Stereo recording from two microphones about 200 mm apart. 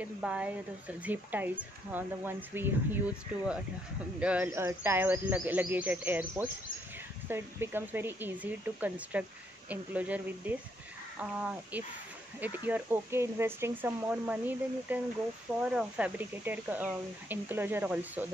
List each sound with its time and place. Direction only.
0.0 s speech: 5° right (ahead or behind)